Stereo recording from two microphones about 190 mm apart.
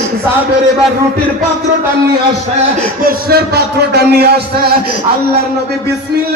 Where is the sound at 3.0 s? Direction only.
55° right (ahead or behind).